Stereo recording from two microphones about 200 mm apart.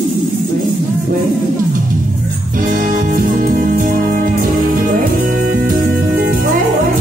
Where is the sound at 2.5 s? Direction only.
45° right (ahead or behind).